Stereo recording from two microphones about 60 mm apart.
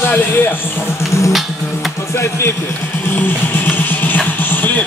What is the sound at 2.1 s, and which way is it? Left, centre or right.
Speech, left.